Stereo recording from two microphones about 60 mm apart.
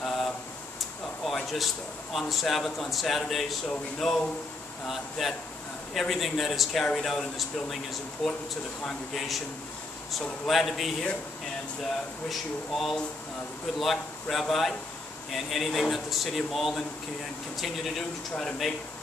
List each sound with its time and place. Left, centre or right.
0.0 s a sound: centre
2.1 s speech: centre
10.4 s speech: centre
18.3 s speech: centre